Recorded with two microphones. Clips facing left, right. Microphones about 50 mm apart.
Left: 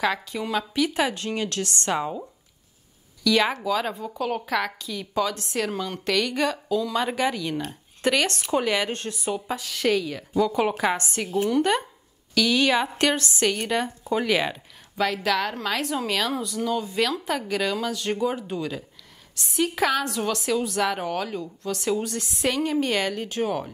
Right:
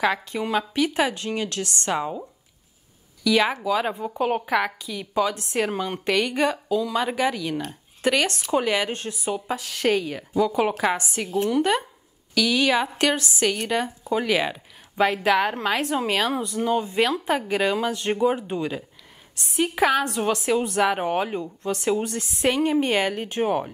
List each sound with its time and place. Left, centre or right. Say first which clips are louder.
0.2 s a woman's voice: right 2 dB; right
1.9 s speech: right 1 dB; centre
3.3 s a woman's voice: right 1 dB; centre
11.2 s speech: even; centre
15.2 s a woman's voice: right 4 dB; right